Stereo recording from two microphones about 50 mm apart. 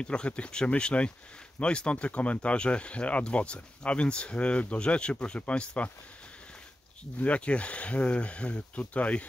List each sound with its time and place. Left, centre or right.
0.0 s speech: centre
7.2 s speech: left